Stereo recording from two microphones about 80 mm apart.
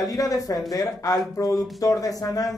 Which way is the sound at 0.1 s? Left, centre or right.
Left.